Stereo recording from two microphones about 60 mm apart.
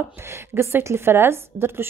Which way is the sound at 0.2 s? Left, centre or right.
Right.